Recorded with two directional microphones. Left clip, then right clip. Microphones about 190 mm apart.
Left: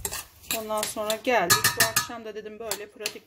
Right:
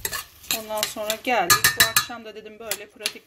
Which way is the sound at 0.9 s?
Centre (ahead or behind).